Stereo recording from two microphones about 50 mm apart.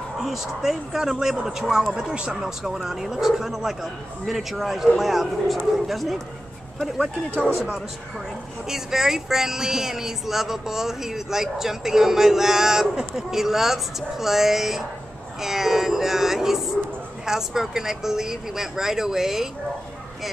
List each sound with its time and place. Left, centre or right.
0.2 s speech: centre
2.0 s speech: centre
2.6 s speech: centre
8.6 s speech: centre